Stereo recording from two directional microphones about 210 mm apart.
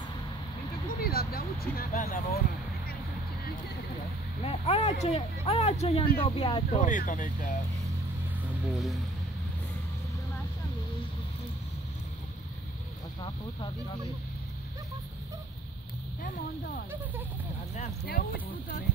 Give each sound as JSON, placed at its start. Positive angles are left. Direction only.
{"t": 1.0, "sound": "vehicle", "side_deg": 45}
{"t": 4.4, "sound": "speech", "side_deg": 30}
{"t": 6.8, "sound": "speech", "side_deg": 40}
{"t": 8.7, "sound": "speech", "side_deg": 0}
{"t": 16.2, "sound": "speech", "side_deg": 40}